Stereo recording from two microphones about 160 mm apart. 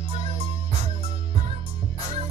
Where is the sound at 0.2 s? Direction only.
35° right (ahead or behind).